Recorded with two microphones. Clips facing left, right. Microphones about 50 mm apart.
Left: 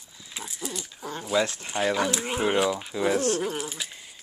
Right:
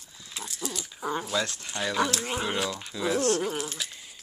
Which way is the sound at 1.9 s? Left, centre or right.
Centre.